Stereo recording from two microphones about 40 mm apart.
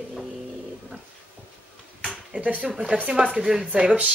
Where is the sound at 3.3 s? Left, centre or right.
Centre.